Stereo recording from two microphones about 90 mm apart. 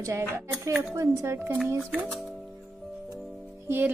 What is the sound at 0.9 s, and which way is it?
Speech, 30° right (ahead or behind).